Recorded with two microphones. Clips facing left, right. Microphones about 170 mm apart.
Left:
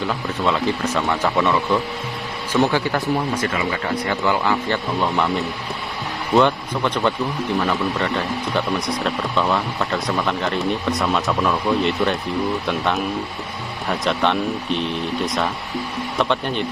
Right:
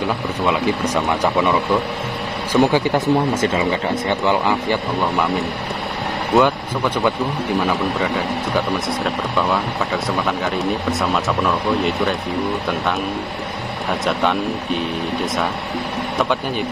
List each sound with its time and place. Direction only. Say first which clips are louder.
0.5 s speech: right 2 dB; 15° right (ahead or behind)
2.5 s speech: right 3 dB; 15° right (ahead or behind)
6.3 s speech: right 1 dB; 5° right (ahead or behind)
10.0 s speech: right 1 dB; centre (ahead or behind)
14.0 s speech: even; centre (ahead or behind)
16.2 s speech: even; 5° right (ahead or behind)